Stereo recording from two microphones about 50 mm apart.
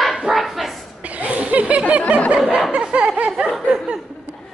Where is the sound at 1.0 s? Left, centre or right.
Right.